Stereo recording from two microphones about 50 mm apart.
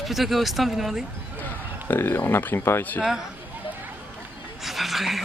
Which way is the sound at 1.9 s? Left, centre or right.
Left.